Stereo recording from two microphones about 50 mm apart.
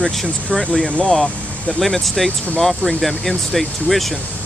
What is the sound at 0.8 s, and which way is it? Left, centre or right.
Speech, centre.